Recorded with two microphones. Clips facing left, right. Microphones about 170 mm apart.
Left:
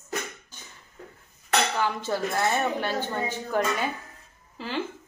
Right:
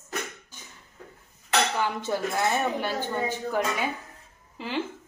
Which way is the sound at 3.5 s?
10° right (ahead or behind).